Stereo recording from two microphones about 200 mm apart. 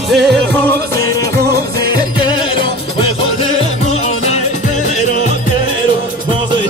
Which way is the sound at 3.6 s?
30° left (ahead or behind).